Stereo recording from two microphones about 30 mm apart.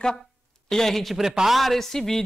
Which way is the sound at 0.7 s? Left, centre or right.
Centre.